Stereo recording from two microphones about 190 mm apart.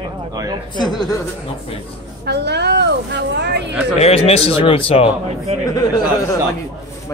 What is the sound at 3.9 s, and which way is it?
Speech, 35° left (ahead or behind).